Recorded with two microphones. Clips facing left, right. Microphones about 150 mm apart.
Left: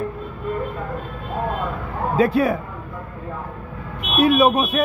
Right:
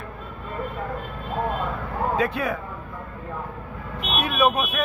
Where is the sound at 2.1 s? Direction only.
35° left (ahead or behind).